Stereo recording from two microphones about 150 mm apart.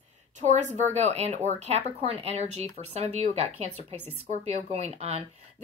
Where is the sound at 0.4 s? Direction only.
55° right (ahead or behind).